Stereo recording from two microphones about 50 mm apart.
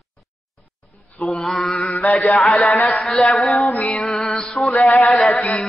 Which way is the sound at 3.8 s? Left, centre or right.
Centre.